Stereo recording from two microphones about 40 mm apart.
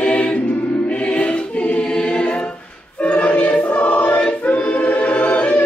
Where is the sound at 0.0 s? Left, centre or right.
Left.